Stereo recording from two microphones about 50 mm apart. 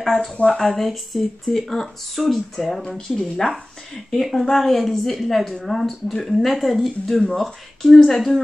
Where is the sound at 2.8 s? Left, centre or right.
Centre.